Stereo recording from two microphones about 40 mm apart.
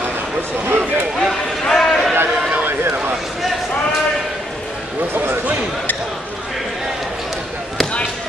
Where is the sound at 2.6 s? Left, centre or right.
Right.